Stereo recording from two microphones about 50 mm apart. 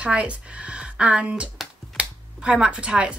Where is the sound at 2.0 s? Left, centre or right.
Right.